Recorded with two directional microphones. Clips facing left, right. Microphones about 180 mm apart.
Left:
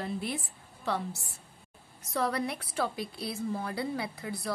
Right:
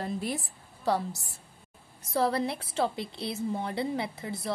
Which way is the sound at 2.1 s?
30° right (ahead or behind).